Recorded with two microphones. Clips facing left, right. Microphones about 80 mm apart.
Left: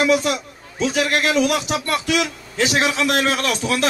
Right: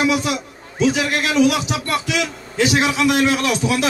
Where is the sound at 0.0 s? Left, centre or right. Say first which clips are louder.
Left 1 dB; left.